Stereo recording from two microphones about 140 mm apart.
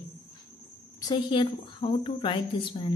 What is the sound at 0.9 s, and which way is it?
A woman's voice, 30° left (ahead or behind).